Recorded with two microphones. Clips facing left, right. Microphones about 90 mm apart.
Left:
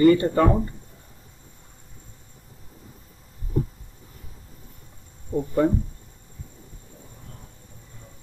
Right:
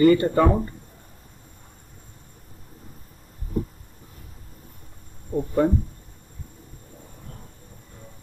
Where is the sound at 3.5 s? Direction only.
50° right (ahead or behind).